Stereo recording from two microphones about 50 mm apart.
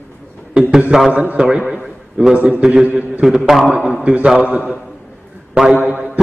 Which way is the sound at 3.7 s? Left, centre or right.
Centre.